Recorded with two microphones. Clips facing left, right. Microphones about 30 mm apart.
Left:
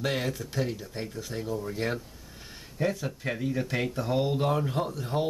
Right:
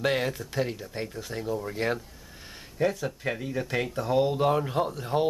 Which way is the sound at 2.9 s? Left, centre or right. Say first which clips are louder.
Right 1 dB; centre.